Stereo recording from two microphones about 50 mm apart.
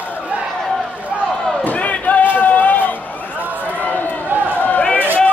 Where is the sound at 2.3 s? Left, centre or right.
Left.